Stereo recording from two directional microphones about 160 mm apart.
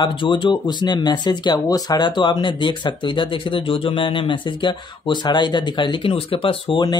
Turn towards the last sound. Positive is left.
turn(degrees=30)  # may be behind; listen again after turning